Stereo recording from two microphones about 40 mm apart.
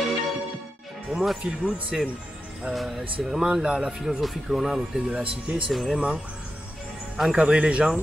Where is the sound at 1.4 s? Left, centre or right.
Right.